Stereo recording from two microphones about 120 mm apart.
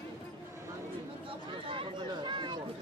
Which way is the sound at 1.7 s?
45° right (ahead or behind).